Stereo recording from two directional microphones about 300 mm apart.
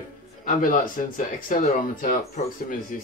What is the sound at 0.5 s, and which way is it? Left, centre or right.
Speech, left.